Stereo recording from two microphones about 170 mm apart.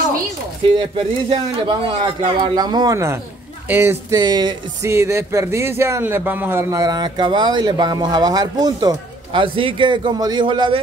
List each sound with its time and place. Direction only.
0.7 s speech: 30° right (ahead or behind)